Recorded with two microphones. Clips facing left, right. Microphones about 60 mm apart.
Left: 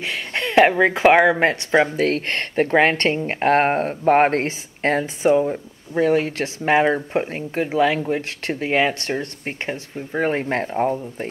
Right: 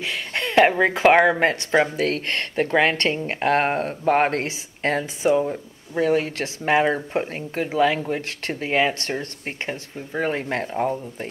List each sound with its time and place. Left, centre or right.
0.0 s a sound: left
0.6 s speech: centre
1.4 s speech: left
5.3 s speech: centre
5.9 s speech: left